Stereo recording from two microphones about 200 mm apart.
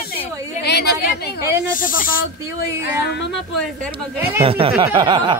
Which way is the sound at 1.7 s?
45° left (ahead or behind).